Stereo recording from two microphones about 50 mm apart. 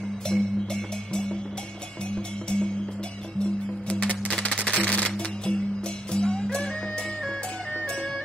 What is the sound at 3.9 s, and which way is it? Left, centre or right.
Music, left.